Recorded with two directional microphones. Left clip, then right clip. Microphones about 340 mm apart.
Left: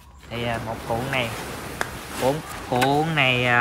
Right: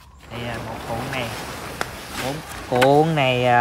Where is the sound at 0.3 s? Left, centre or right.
Centre.